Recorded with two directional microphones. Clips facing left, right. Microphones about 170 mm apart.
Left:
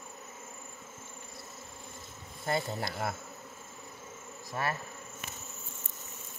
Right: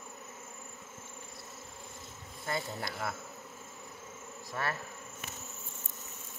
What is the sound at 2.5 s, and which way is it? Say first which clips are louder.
Bee: left 4 dB; 30° left (ahead or behind).